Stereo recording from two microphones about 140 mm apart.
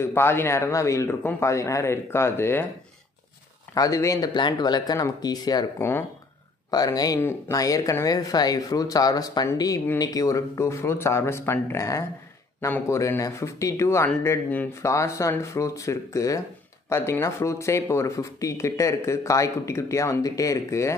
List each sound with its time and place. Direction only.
0.0 s speech: 15° left (ahead or behind)
3.7 s speech: 25° left (ahead or behind)
5.8 s speech: 15° left (ahead or behind)
6.7 s speech: 30° left (ahead or behind)
7.2 s speech: 15° left (ahead or behind)